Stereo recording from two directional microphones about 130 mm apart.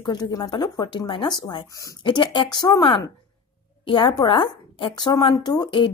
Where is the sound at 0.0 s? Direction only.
30° left (ahead or behind).